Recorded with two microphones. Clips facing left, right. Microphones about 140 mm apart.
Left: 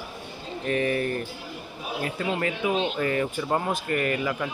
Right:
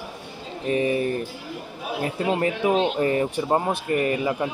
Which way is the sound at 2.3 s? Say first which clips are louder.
Right 5 dB; 30° right (ahead or behind).